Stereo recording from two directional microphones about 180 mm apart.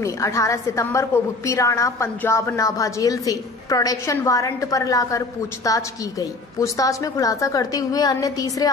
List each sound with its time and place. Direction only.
0.0 s a woman's voice: 15° left (ahead or behind)